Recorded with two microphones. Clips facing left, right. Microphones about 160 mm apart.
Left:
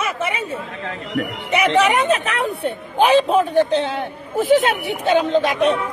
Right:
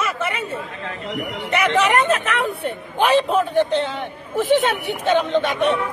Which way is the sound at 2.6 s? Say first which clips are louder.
Left 3 dB; centre (ahead or behind).